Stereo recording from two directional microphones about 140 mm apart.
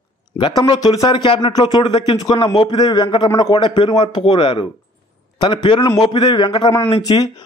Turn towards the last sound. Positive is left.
turn(degrees=30)  # may be behind; listen again after turning